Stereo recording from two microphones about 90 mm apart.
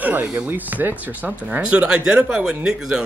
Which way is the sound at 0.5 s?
20° right (ahead or behind).